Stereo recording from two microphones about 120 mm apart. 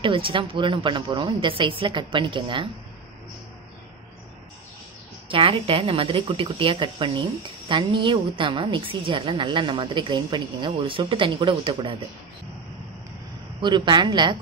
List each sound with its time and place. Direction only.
0.0 s speech: 45° right (ahead or behind)
5.3 s speech: 50° right (ahead or behind)
13.6 s a man's voice: 40° right (ahead or behind)